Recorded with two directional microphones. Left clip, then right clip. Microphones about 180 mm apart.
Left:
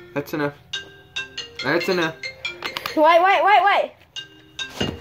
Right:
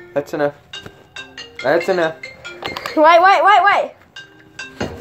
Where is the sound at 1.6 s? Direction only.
60° left (ahead or behind).